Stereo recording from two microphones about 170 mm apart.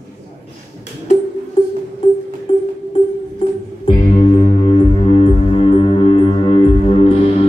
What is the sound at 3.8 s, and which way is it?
Music, 40° left (ahead or behind).